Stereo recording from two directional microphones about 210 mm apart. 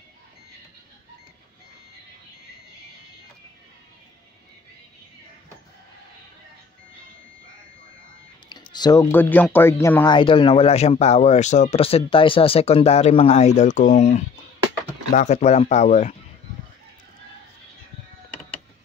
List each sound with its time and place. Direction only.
8.5 s speech: 20° left (ahead or behind)